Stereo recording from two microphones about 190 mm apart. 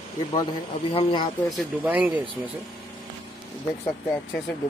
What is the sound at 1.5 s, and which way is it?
Speech, 5° right (ahead or behind).